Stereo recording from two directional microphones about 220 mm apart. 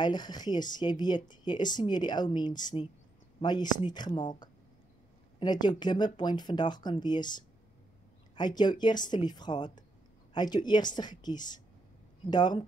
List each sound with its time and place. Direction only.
0.0 s speech: 20° left (ahead or behind)